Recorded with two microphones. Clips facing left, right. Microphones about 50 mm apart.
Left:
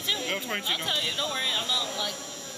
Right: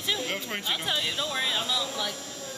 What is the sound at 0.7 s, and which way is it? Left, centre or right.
Speech, centre.